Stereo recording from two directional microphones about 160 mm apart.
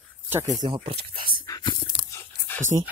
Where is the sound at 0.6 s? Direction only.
30° right (ahead or behind).